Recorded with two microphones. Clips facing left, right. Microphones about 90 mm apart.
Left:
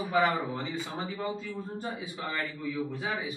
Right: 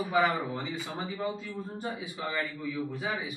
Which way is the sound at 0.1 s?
Centre (ahead or behind).